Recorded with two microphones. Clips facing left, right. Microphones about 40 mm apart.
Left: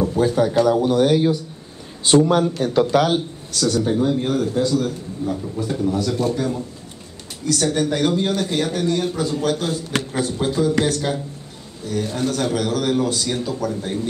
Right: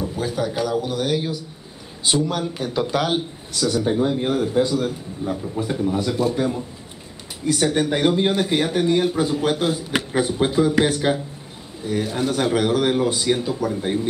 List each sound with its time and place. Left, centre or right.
0.2 s a man's voice: centre